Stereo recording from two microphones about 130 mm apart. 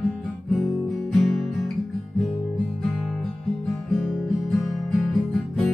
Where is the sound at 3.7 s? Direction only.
Centre (ahead or behind).